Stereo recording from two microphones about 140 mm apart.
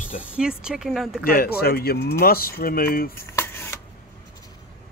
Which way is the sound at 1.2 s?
90° left.